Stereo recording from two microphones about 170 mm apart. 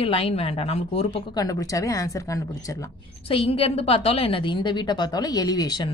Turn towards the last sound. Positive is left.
turn(degrees=25)  # may be behind; listen again after turning